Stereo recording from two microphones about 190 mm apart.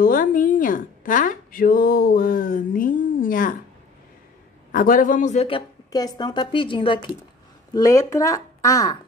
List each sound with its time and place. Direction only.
0.0 s speech: 45° left (ahead or behind)
4.7 s speech: 45° left (ahead or behind)
5.9 s a woman's voice: 20° left (ahead or behind)